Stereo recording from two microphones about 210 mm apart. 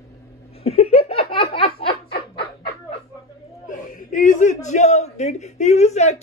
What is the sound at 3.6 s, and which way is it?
A man's voice, 40° left (ahead or behind).